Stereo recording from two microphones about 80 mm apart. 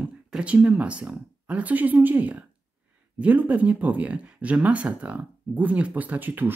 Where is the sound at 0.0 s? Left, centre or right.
Centre.